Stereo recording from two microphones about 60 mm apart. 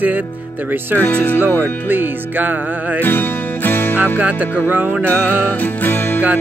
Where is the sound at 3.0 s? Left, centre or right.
Left.